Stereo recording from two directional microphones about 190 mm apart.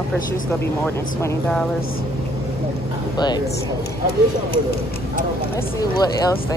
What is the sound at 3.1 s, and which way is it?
Speech, 20° left (ahead or behind).